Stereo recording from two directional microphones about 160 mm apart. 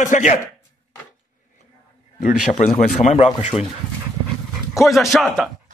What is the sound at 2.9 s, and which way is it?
Speech, 45° left (ahead or behind).